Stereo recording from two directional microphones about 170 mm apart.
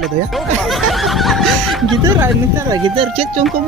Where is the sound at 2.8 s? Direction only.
30° right (ahead or behind).